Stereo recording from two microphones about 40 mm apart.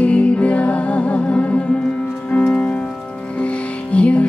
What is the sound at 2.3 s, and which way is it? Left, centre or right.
Music, left.